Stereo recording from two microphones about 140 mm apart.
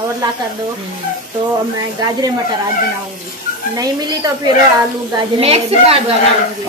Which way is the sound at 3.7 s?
25° right (ahead or behind).